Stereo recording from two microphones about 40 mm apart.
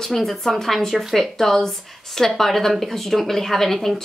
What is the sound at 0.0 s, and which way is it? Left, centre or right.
A woman's voice, centre.